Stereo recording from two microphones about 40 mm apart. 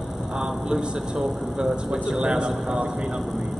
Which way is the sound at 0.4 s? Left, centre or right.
Centre.